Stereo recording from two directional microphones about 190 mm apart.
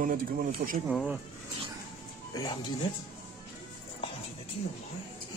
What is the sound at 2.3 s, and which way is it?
Speech, 25° left (ahead or behind).